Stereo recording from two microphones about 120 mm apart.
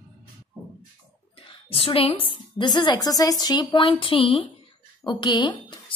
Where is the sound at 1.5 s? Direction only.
50° left (ahead or behind).